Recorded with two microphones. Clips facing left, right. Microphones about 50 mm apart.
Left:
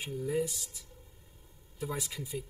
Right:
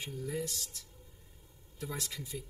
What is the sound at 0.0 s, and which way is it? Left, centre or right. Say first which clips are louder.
Speech: left 5 dB; centre.